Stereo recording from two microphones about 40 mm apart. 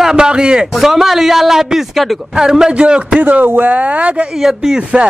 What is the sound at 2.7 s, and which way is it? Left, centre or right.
Speech, right.